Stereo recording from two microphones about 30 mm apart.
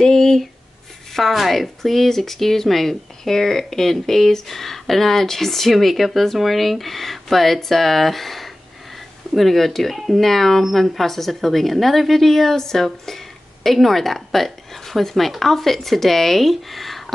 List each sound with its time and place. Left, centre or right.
0.0 s speech: centre
1.1 s speech: centre
1.8 s speech: centre